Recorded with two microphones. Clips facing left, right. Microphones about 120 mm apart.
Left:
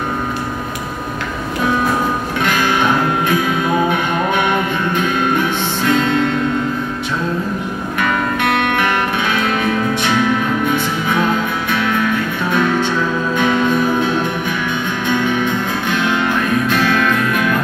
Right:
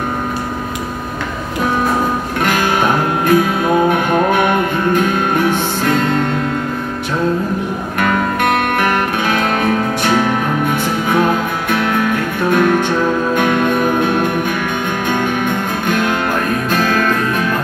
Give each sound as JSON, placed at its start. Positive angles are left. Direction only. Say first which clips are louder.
{"t": 2.4, "sound": "music", "louder": "right 1 dB", "side_deg": -45}
{"t": 8.0, "sound": "music", "louder": "right 2 dB", "side_deg": -45}